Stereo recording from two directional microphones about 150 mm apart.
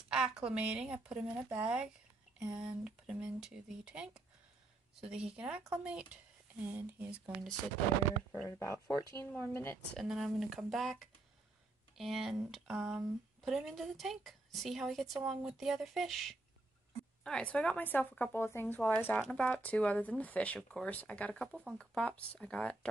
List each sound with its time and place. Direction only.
0.1 s speech: 5° right (ahead or behind)
8.5 s speech: 15° left (ahead or behind)
9.9 s a woman's voice: centre (ahead or behind)
21.5 s speech: 10° right (ahead or behind)
21.7 s speech: 5° left (ahead or behind)